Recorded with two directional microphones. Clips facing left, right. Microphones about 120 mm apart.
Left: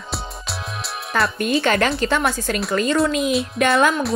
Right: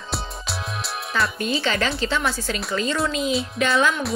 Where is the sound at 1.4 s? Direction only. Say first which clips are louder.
Left 5 dB; 55° left (ahead or behind).